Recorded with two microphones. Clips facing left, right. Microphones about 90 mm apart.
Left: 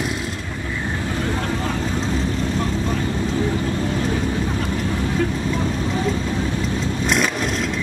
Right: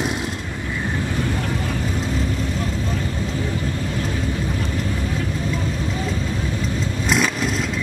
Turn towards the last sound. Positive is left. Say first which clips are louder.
# even
turn(degrees=0)  # may be behind; listen again after turning